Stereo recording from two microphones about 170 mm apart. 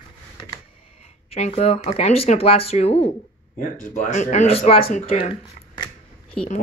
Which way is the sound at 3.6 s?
45° left (ahead or behind).